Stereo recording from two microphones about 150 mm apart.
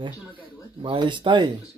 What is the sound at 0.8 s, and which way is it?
Speech, 35° right (ahead or behind).